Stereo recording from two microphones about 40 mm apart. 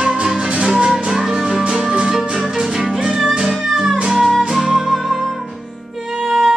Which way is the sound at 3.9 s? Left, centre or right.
Right.